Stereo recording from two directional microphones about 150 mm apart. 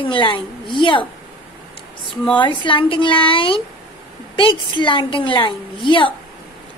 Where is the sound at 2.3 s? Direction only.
35° left (ahead or behind).